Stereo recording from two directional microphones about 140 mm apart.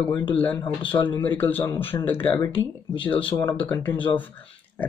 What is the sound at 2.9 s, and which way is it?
Speech, 35° left (ahead or behind).